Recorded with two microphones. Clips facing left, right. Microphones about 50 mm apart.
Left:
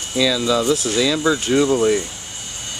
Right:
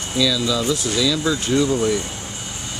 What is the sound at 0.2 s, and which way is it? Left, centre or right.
Speech, left.